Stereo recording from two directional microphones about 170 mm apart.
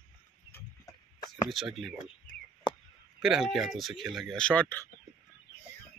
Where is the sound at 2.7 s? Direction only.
25° left (ahead or behind).